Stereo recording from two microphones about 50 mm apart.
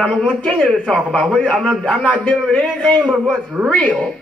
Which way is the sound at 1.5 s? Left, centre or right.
Centre.